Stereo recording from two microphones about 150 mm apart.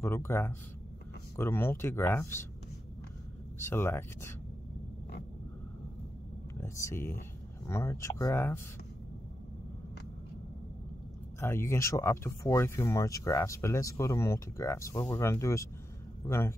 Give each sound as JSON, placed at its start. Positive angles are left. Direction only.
{"t": 0.0, "sound": "speech", "side_deg": 15}
{"t": 3.5, "sound": "speech", "side_deg": 15}
{"t": 6.6, "sound": "speech", "side_deg": 20}
{"t": 11.3, "sound": "speech", "side_deg": 15}